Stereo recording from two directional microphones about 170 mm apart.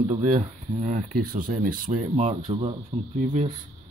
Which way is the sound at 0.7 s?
45° right (ahead or behind).